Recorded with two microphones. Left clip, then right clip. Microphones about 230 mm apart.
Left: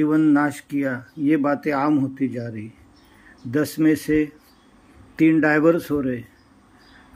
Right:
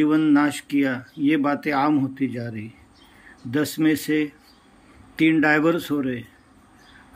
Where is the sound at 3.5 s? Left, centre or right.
Centre.